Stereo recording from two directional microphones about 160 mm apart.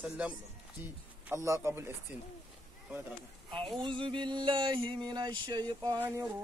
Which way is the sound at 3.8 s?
30° right (ahead or behind).